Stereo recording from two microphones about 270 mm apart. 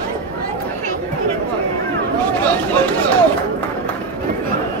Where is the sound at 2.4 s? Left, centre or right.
Centre.